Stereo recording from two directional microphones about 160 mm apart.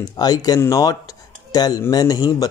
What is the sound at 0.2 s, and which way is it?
Speech, 25° left (ahead or behind).